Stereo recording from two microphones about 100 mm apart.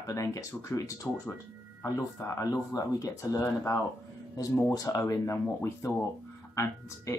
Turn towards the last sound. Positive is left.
turn(degrees=30)  # may be behind; listen again after turning